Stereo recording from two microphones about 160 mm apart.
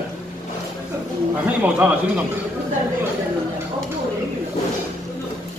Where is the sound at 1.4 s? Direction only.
10° right (ahead or behind).